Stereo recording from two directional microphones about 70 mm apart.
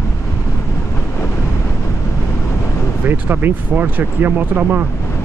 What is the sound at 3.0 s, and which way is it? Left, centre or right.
Speech, right.